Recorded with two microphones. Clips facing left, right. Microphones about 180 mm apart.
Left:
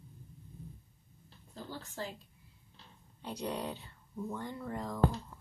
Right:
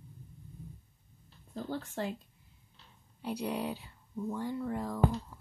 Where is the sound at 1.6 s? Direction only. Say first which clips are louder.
Right 6 dB; 55° right (ahead or behind).